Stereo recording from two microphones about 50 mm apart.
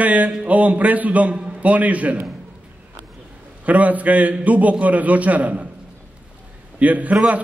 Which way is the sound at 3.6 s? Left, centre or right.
Right.